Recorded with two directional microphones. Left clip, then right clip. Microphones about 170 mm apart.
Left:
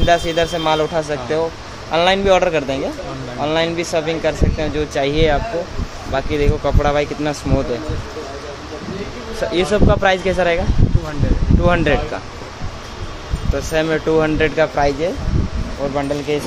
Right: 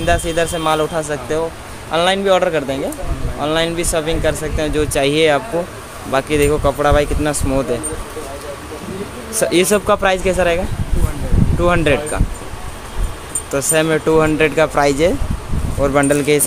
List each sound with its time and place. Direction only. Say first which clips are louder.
0.0 s speech: left 1 dB; 10° right (ahead or behind); by 6.7 s 30° right (ahead or behind)
6.8 s speech: right 3 dB; 20° right (ahead or behind)
9.4 s speech: right 2 dB; 40° right (ahead or behind)
10.0 s speech: even; 15° right (ahead or behind)
11.6 s speech: right 2 dB; 15° right (ahead or behind)
13.6 s speech: right 3 dB; 25° right (ahead or behind)
14.8 s speech: right 3 dB; 45° right (ahead or behind)
15.9 s speech: right 7 dB; 65° right (ahead or behind)